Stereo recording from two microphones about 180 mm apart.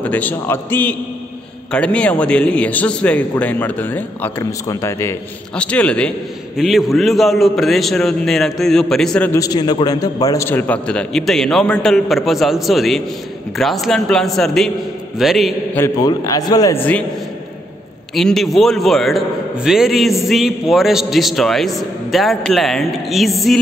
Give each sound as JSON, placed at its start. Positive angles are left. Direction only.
{"t": 0.0, "sound": "a man's voice", "side_deg": 10}
{"t": 9.4, "sound": "a man's voice", "side_deg": 20}
{"t": 15.7, "sound": "a man's voice", "side_deg": 15}
{"t": 18.1, "sound": "a man's voice", "side_deg": 0}